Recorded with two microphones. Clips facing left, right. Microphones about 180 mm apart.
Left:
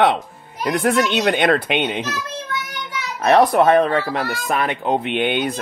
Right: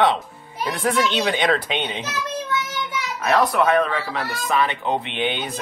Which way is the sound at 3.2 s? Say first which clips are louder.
Left 5 dB; 60° left (ahead or behind).